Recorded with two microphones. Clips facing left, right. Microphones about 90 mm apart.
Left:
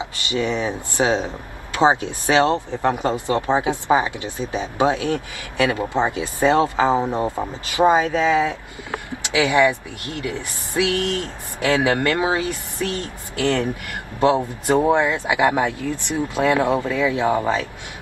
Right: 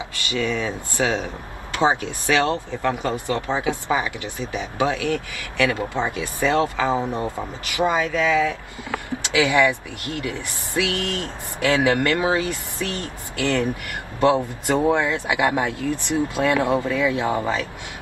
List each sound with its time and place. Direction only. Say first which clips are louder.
0.0 s speech: left 2 dB; 20° left (ahead or behind)